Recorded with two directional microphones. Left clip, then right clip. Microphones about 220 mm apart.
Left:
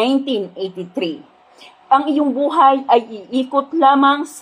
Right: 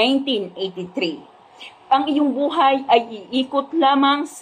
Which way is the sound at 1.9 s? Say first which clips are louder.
Left 3 dB; 25° left (ahead or behind).